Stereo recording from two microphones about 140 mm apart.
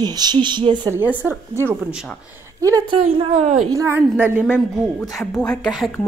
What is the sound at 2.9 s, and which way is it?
Speech, 40° right (ahead or behind).